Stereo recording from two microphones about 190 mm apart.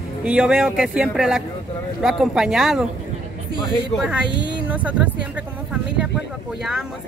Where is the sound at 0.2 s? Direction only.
5° right (ahead or behind).